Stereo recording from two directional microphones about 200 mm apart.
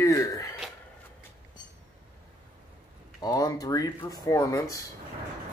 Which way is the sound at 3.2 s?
15° left (ahead or behind).